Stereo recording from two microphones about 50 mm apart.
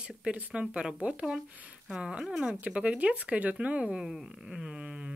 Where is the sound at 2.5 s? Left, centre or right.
Right.